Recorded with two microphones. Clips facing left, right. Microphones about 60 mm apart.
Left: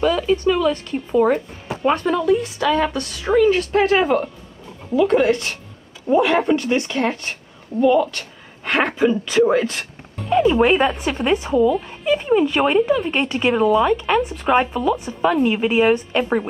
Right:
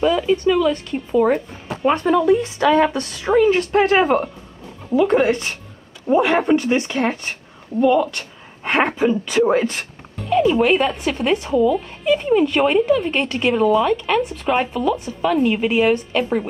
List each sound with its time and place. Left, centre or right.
0.0 s speech: centre
1.8 s speech: centre
2.2 s a woman's voice: right
7.8 s speech: centre
8.1 s a woman's voice: right
10.3 s speech: left
11.5 s speech: centre
15.4 s speech: centre
15.7 s speech: centre